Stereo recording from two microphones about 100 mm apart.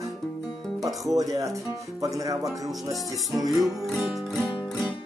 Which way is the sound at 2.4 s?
Centre (ahead or behind).